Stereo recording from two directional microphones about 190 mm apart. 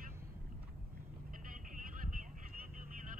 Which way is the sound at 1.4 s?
45° right (ahead or behind).